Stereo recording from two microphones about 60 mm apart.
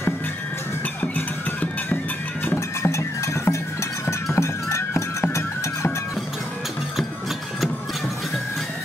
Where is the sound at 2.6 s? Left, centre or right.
Left.